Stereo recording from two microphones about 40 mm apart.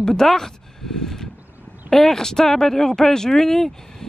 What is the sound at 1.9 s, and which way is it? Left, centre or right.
Speech, centre.